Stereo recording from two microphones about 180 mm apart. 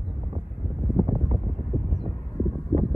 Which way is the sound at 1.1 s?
30° right (ahead or behind).